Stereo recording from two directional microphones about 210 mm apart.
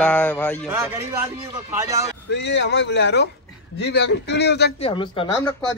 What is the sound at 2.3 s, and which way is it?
Speech, 60° left (ahead or behind).